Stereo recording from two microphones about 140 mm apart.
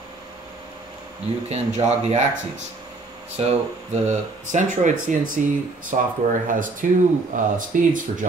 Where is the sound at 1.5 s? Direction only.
55° right (ahead or behind).